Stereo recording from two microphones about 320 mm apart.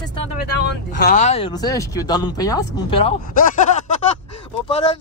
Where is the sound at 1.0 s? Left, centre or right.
Left.